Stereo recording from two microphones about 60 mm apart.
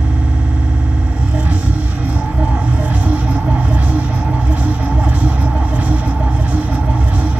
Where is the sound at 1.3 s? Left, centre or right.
Right.